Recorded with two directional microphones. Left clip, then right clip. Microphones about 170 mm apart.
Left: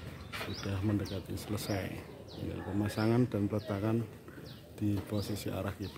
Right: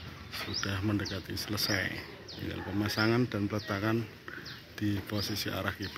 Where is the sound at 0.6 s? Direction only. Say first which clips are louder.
Right 2 dB; centre (ahead or behind).